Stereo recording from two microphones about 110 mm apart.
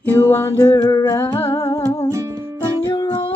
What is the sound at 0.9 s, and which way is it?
Music, 30° left (ahead or behind).